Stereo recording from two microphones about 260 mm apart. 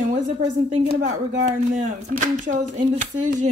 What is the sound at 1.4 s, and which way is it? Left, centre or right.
Speech, right.